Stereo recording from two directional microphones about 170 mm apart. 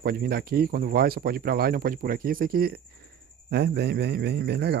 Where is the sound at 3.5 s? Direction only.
75° right (ahead or behind).